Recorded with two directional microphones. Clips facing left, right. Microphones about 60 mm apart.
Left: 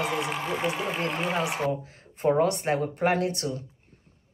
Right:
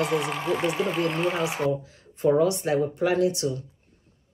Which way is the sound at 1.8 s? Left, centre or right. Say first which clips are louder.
Right 2 dB; left.